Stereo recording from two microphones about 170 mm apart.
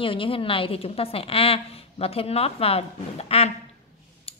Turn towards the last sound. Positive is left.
turn(degrees=35)  # may be behind; listen again after turning